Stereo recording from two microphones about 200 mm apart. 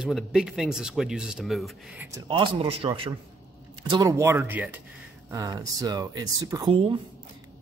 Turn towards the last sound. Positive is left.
turn(degrees=-25)  # may be behind; listen again after turning